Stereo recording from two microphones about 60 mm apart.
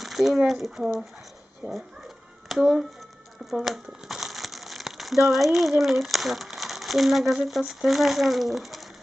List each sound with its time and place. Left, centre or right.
0.0 s a sound: centre
0.7 s speech: centre
1.6 s speech: right
2.6 s speech: centre